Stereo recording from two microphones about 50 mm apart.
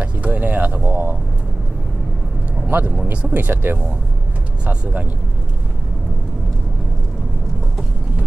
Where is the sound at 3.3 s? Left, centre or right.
Right.